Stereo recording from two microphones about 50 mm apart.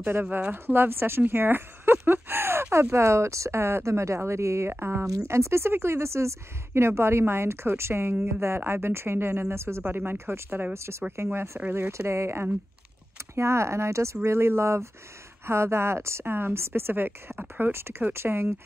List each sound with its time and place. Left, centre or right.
0.0 s a woman's voice: right
4.6 s a woman's voice: right
9.8 s a woman's voice: right
14.2 s a woman's voice: right
16.3 s a woman's voice: right